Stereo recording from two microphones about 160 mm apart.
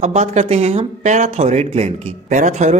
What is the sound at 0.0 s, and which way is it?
A man's voice, 45° right (ahead or behind).